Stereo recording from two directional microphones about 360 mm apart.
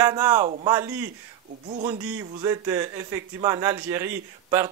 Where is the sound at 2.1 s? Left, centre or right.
Centre.